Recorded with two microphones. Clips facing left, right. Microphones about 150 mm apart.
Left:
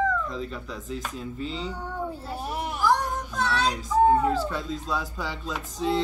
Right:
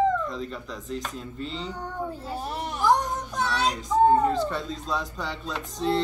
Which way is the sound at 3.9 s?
25° right (ahead or behind).